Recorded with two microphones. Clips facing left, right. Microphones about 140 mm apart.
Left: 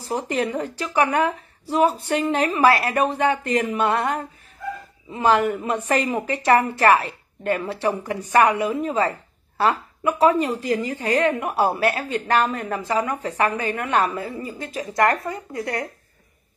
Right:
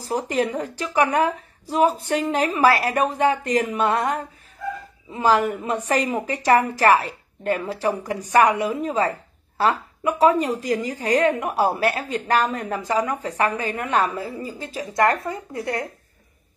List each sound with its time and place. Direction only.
0.0 s a woman's voice: 35° right (ahead or behind)